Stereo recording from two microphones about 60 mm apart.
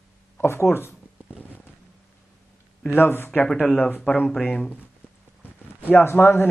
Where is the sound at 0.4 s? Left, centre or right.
Left.